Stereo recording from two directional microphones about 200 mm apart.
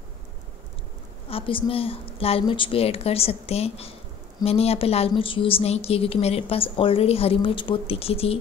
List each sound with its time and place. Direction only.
1.3 s a woman's voice: 25° left (ahead or behind)